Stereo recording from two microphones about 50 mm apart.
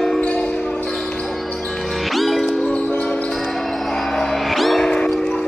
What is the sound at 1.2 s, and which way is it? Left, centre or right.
Music, centre.